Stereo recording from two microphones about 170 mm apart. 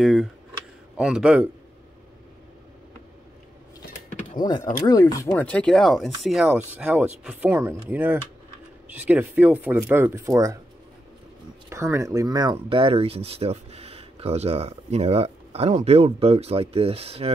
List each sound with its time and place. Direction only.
0.0 s speech: centre (ahead or behind)
4.6 s speech: 50° left (ahead or behind)
4.8 s speech: 20° left (ahead or behind)
5.3 s speech: 5° left (ahead or behind); by 10.6 s 20° right (ahead or behind)
11.7 s speech: 15° right (ahead or behind); by 17.3 s 35° right (ahead or behind)